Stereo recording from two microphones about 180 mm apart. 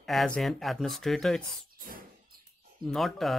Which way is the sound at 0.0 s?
Centre (ahead or behind).